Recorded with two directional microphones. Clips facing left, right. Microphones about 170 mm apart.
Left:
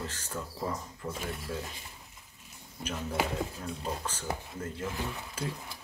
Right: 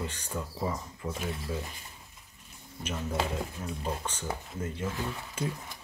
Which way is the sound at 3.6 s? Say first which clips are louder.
Right 1 dB; 5° right (ahead or behind).